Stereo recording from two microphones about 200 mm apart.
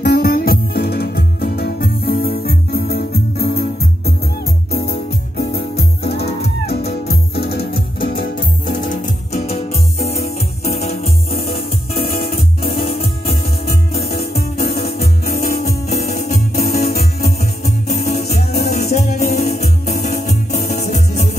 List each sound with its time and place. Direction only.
0.0 s music: 55° left (ahead or behind)
5.4 s music: 55° left (ahead or behind); by 11.0 s 30° left (ahead or behind)
14.6 s music: 50° left (ahead or behind)
16.5 s music: 50° left (ahead or behind)
17.2 s music: 35° left (ahead or behind)